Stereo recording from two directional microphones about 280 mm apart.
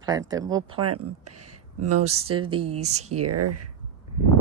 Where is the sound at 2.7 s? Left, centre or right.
Right.